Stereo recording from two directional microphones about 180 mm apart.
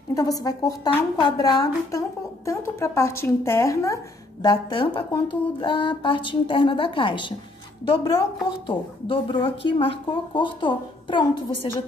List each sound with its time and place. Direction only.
0.1 s a woman's voice: 20° left (ahead or behind)
8.5 s a woman's voice: 25° left (ahead or behind)